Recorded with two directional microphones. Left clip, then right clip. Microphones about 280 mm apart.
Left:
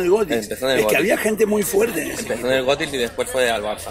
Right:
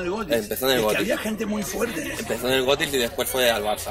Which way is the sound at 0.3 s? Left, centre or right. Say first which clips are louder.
Left 1 dB; right.